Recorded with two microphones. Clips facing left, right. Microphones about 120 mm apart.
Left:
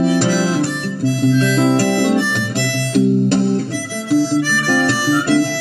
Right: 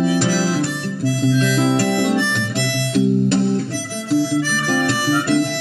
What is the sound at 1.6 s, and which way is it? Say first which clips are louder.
Harmonica: left 3 dB; 35° left (ahead or behind).